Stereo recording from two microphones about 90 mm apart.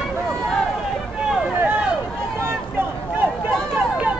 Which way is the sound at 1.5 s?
25° right (ahead or behind).